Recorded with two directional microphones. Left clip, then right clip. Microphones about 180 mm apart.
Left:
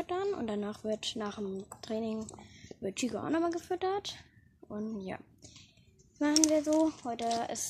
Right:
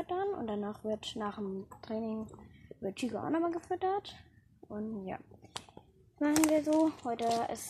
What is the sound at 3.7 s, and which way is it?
Speech, 25° left (ahead or behind).